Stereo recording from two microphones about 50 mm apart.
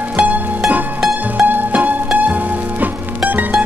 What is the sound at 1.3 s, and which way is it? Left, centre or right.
Music, right.